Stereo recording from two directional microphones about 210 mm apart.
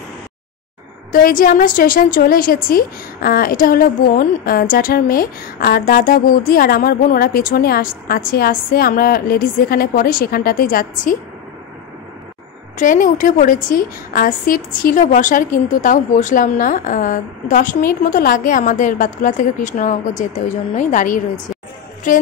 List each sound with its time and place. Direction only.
1.1 s a woman's voice: 40° left (ahead or behind)
12.7 s a woman's voice: 40° left (ahead or behind)